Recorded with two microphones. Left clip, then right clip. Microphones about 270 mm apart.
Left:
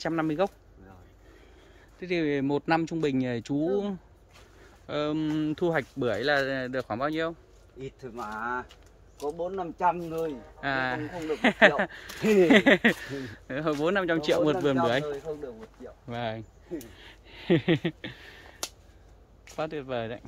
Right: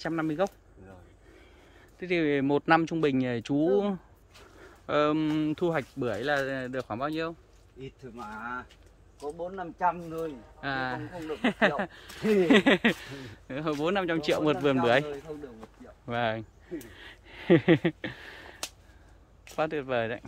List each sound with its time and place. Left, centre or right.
0.0 s speech: centre
2.0 s speech: centre
8.0 s speech: centre; by 10.3 s left
10.6 s speech: centre
16.1 s speech: centre
16.9 s a sound: centre
19.5 s speech: centre